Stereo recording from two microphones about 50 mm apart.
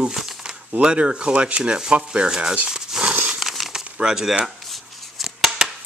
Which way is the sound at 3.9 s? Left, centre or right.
Centre.